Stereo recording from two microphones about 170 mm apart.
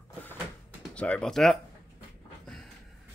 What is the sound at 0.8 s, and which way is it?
Speech, 5° left (ahead or behind).